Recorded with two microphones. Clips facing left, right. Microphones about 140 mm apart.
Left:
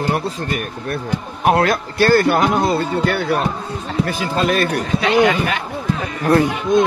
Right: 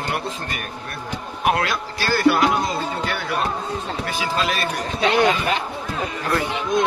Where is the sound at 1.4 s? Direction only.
40° left (ahead or behind); by 4.9 s 55° left (ahead or behind).